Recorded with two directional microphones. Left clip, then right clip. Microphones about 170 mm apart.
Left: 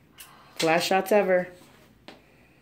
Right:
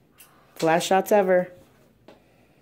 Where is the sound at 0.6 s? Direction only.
30° right (ahead or behind).